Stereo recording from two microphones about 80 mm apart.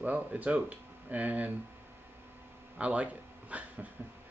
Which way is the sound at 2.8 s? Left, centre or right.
Centre.